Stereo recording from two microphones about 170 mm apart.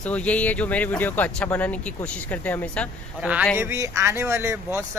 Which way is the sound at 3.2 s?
10° right (ahead or behind).